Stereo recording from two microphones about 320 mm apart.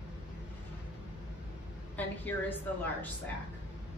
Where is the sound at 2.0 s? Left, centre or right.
Centre.